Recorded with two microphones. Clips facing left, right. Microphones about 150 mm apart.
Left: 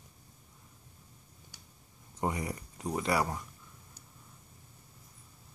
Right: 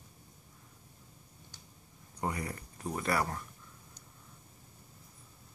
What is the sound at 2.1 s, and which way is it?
Speech, 20° left (ahead or behind).